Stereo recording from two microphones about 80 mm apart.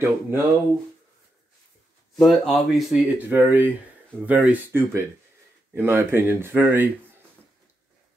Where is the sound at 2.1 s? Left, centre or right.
Centre.